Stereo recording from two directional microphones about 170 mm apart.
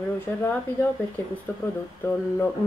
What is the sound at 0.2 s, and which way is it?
Speech, 15° left (ahead or behind).